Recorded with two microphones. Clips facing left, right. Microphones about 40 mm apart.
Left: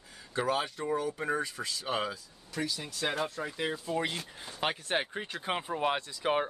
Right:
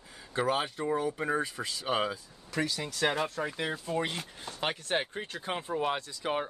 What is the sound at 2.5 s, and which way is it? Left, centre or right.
Speech, right.